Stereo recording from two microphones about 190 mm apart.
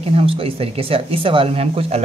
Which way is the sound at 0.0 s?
30° right (ahead or behind).